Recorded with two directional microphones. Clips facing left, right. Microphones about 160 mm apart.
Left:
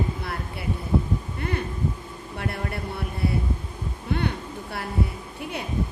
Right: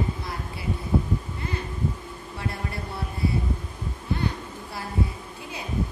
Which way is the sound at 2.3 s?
60° left (ahead or behind).